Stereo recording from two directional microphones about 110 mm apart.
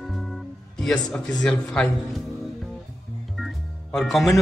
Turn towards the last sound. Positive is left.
turn(degrees=0)  # may be behind; listen again after turning